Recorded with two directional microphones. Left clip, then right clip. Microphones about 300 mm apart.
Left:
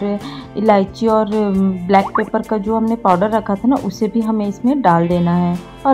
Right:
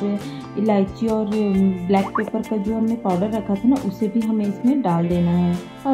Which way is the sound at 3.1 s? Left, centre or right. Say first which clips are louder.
Left 7 dB; centre.